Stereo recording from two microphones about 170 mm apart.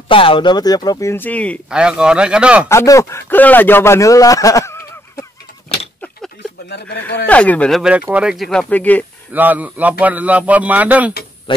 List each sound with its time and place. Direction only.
0.1 s speech: 30° left (ahead or behind); by 1.6 s 10° left (ahead or behind)
1.7 s speech: 5° right (ahead or behind)
2.7 s speech: 15° left (ahead or behind)
6.7 s speech: 85° left
7.2 s speech: 10° left (ahead or behind)
8.0 s speech: 5° right (ahead or behind); by 9.0 s 10° left (ahead or behind)
9.3 s a man's voice: 10° right (ahead or behind)
11.5 s speech: 30° left (ahead or behind)